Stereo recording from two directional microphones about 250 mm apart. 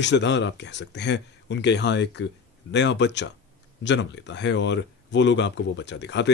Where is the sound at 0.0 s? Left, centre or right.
Left.